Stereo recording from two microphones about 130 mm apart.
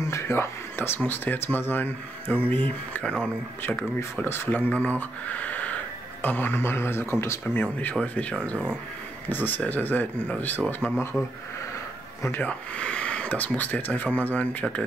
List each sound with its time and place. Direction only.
0.1 s speech: 20° left (ahead or behind)
12.2 s speech: 15° left (ahead or behind)